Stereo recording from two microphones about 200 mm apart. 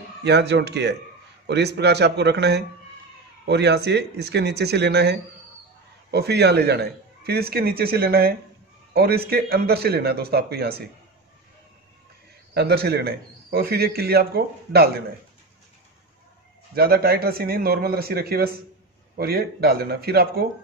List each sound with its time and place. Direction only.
0.2 s a man's voice: 55° right (ahead or behind)
12.5 s a man's voice: 55° right (ahead or behind)
16.7 s a man's voice: 50° right (ahead or behind)